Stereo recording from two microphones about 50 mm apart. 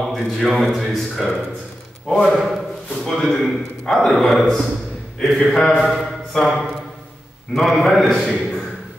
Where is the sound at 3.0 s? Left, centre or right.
Centre.